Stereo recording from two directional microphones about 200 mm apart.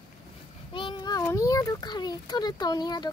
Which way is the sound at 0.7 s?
25° left (ahead or behind).